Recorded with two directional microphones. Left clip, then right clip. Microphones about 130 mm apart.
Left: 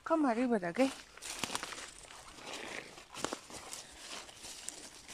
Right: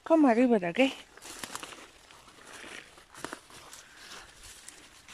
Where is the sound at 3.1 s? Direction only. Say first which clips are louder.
Left 1 dB; 15° left (ahead or behind).